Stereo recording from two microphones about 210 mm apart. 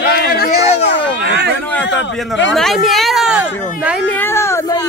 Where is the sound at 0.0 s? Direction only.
50° left (ahead or behind).